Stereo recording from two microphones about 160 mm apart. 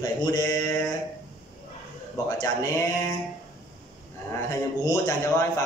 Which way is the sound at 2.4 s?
20° left (ahead or behind).